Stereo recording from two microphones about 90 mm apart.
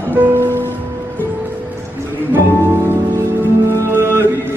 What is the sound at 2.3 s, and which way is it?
Music, 25° right (ahead or behind).